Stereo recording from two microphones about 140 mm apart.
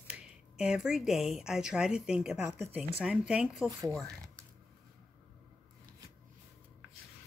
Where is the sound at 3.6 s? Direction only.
25° right (ahead or behind).